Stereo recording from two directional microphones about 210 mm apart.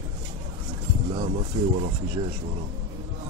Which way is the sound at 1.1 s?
30° right (ahead or behind).